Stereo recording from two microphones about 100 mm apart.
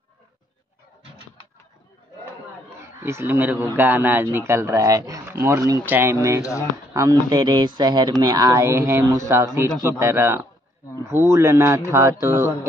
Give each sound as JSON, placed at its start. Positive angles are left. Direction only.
{"t": 2.8, "sound": "a man's voice", "side_deg": -25}
{"t": 4.7, "sound": "speech", "side_deg": -40}
{"t": 5.3, "sound": "speech", "side_deg": -25}
{"t": 6.4, "sound": "speech", "side_deg": 30}
{"t": 6.9, "sound": "speech", "side_deg": -35}